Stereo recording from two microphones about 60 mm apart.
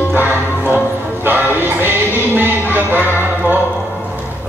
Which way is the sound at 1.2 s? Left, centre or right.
Right.